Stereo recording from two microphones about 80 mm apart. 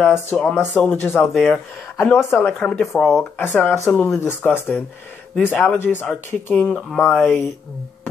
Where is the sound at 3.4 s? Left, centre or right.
Left.